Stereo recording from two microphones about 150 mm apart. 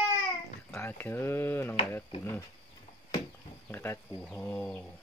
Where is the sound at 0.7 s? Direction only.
15° left (ahead or behind).